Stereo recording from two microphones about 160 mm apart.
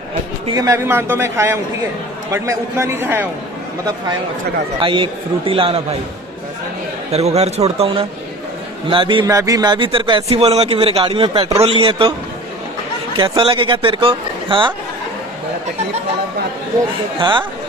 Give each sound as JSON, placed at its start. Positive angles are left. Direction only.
{"t": 0.6, "sound": "a man's voice", "side_deg": -20}
{"t": 4.7, "sound": "a man's voice", "side_deg": -30}
{"t": 7.1, "sound": "a man's voice", "side_deg": -40}
{"t": 9.3, "sound": "a man's voice", "side_deg": -20}
{"t": 13.1, "sound": "a man's voice", "side_deg": -30}
{"t": 17.2, "sound": "speech", "side_deg": -30}